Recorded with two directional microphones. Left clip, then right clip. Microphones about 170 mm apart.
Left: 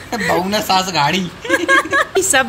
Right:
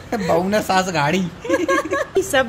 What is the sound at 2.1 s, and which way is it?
Speech, 20° right (ahead or behind).